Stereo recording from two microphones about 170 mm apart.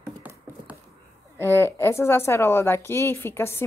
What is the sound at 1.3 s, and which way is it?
A woman's voice, 15° left (ahead or behind).